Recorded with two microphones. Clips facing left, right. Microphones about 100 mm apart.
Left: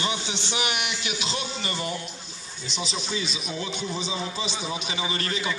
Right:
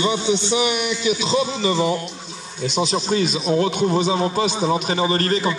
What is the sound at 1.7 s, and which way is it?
Speech, 90° right.